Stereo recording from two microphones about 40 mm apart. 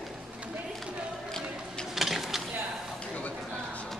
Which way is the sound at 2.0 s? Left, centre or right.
Centre.